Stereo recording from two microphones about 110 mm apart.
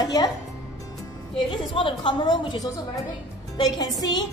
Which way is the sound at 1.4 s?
50° left (ahead or behind).